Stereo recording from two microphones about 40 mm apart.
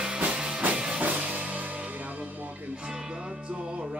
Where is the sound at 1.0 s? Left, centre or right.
Right.